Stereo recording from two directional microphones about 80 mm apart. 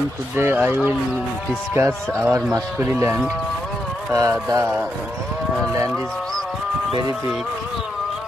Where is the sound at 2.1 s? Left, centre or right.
Right.